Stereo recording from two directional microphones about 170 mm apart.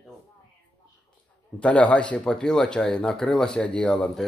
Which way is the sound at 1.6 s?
5° left (ahead or behind).